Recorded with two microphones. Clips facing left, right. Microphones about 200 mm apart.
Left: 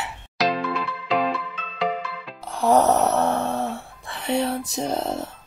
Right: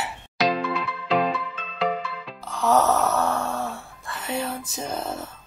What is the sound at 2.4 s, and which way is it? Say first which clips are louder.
Music: left 2 dB; 30° left (ahead or behind).